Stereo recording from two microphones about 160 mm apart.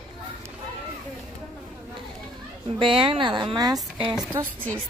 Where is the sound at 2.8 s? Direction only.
35° right (ahead or behind).